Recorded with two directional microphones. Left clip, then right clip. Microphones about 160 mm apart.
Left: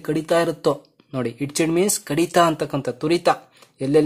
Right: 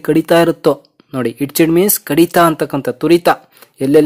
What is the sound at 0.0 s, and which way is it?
Speech, 35° right (ahead or behind).